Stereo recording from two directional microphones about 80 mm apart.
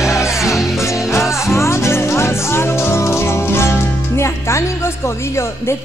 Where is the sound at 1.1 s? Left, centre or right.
Left.